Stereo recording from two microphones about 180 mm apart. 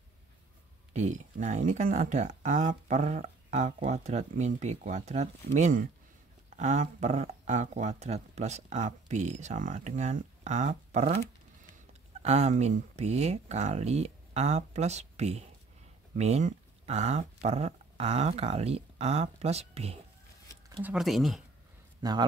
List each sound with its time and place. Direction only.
0.9 s speech: 40° right (ahead or behind)
12.2 s speech: 40° right (ahead or behind)
20.8 s speech: 5° right (ahead or behind)
22.0 s speech: 20° right (ahead or behind)